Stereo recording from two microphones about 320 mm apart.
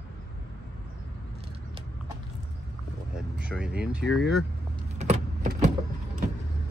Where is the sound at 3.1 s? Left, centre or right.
Centre.